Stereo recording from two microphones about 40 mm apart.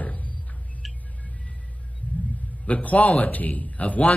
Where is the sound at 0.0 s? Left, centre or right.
Left.